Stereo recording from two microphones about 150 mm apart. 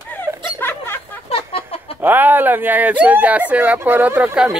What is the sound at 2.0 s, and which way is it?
Speech, 10° right (ahead or behind).